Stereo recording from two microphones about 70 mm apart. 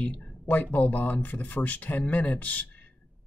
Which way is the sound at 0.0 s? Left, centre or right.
Left.